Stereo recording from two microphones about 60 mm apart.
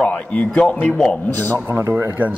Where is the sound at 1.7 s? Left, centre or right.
Right.